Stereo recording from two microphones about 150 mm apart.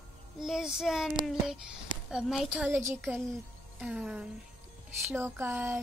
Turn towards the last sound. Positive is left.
turn(degrees=-15)  # may be behind; listen again after turning